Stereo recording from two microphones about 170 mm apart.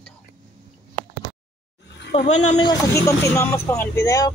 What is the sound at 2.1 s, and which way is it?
Speech, 40° left (ahead or behind).